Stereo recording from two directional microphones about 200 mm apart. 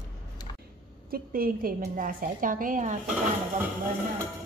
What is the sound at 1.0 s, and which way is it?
A woman's voice, 45° right (ahead or behind).